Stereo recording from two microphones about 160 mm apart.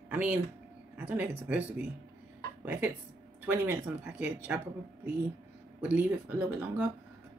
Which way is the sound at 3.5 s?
15° right (ahead or behind).